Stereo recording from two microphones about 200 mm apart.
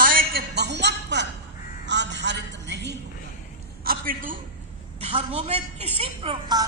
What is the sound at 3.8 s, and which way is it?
Speech, 45° right (ahead or behind).